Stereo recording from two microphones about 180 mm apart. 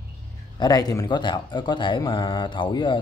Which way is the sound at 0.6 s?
20° left (ahead or behind).